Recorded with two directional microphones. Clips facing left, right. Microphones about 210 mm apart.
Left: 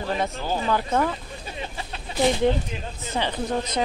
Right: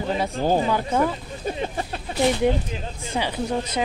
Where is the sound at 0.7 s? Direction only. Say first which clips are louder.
Right 1 dB; 10° right (ahead or behind).